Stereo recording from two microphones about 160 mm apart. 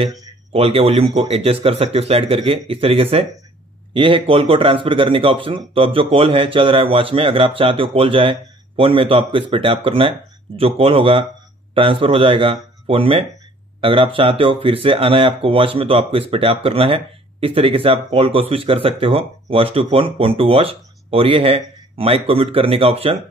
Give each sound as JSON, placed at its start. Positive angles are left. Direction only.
{"t": 0.5, "sound": "speech", "side_deg": -40}